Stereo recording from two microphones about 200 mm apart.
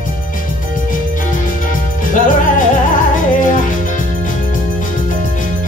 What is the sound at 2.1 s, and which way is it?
Music, 40° left (ahead or behind).